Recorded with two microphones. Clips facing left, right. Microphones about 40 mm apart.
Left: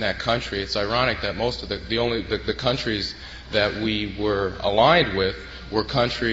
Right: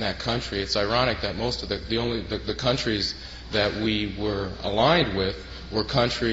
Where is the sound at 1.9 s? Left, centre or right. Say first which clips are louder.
Left 5 dB; left.